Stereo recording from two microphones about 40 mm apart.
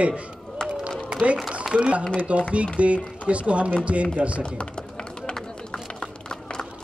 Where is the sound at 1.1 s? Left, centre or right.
Right.